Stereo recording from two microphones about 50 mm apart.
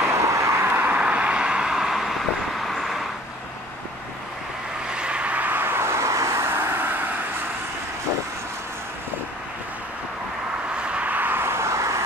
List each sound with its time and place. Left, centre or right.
0.0 s vehicle: right
0.9 s vehicle: right; by 2.2 s centre
2.7 s vehicle: centre
4.8 s vehicle: centre
5.6 s vehicle: right
10.7 s vehicle: right
11.4 s vehicle: right